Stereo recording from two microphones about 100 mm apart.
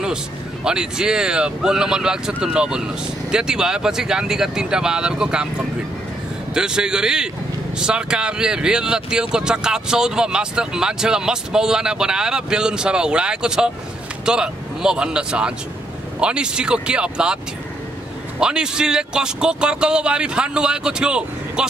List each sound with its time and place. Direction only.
0.7 s speech: 5° right (ahead or behind)
6.5 s speech: 5° right (ahead or behind)
18.4 s speech: 5° right (ahead or behind)